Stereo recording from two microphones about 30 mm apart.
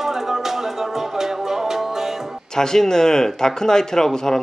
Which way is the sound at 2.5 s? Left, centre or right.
Left.